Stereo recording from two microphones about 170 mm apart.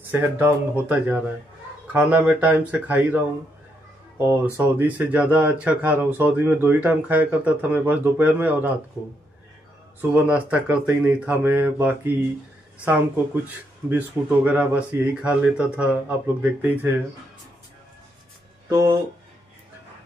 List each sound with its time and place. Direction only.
0.1 s speech: 10° right (ahead or behind)
4.3 s speech: 10° right (ahead or behind)
10.1 s speech: 10° right (ahead or behind)
18.7 s speech: 20° right (ahead or behind)